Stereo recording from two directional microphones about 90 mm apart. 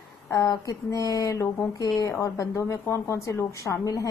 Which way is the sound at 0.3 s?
35° left (ahead or behind).